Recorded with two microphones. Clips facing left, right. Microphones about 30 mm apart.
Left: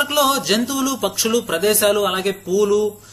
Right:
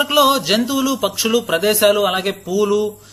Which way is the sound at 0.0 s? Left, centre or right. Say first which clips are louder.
Right 3 dB; centre.